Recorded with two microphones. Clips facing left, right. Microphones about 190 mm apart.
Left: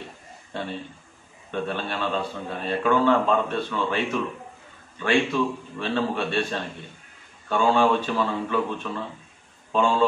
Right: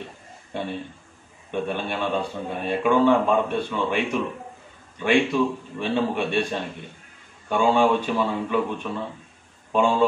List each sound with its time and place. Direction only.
0.5 s a man's voice: 15° right (ahead or behind)